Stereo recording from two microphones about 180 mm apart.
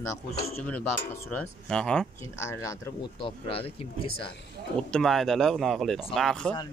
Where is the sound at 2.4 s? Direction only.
15° left (ahead or behind).